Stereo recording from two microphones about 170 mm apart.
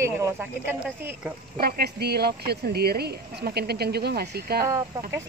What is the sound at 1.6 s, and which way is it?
Speech, 65° right (ahead or behind).